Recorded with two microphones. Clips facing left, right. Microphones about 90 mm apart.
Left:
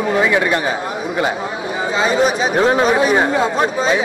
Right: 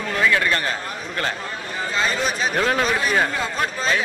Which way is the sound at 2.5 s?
25° left (ahead or behind).